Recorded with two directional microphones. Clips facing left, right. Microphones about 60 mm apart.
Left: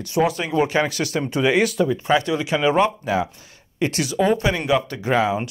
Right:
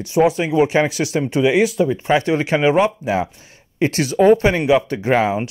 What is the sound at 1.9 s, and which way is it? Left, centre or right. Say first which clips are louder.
Speech: right 3 dB; right.